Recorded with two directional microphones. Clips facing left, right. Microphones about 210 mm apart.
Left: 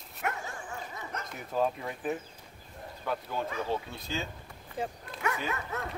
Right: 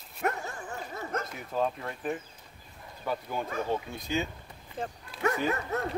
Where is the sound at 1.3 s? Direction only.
Centre (ahead or behind).